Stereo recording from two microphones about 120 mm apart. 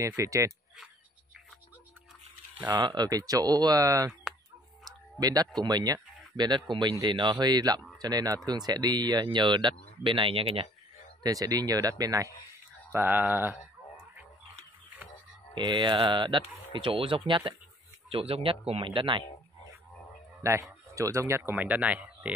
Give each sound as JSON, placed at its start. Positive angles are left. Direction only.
{"t": 0.0, "sound": "speech", "side_deg": -25}
{"t": 2.7, "sound": "speech", "side_deg": -35}
{"t": 4.8, "sound": "a sound", "side_deg": -30}
{"t": 5.6, "sound": "speech", "side_deg": -35}
{"t": 11.2, "sound": "speech", "side_deg": -30}
{"t": 12.9, "sound": "speech", "side_deg": -15}
{"t": 15.5, "sound": "speech", "side_deg": -40}
{"t": 20.4, "sound": "speech", "side_deg": -25}